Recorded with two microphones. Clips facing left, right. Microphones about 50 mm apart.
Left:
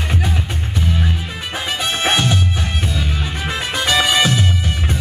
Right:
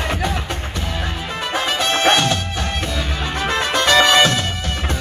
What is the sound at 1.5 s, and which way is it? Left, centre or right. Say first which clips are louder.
Music: right 3 dB; centre.